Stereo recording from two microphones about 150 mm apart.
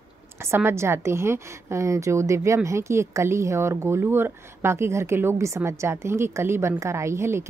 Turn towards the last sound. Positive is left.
turn(degrees=-15)  # may be behind; listen again after turning